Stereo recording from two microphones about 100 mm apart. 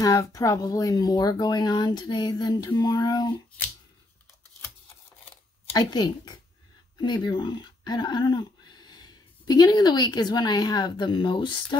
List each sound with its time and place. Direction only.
0.0 s speech: 35° left (ahead or behind)
5.8 s speech: 45° left (ahead or behind)